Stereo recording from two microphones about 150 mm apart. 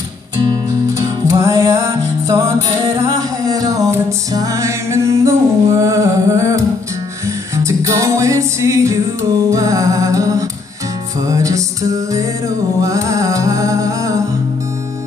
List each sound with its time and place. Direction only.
0.4 s music: 25° right (ahead or behind)